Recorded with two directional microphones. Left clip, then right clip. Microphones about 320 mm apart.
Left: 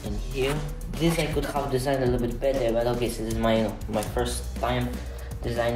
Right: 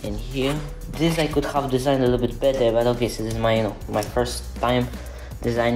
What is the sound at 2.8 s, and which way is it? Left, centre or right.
Speech, centre.